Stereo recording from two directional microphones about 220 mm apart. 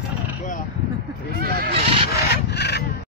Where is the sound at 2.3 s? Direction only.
50° left (ahead or behind).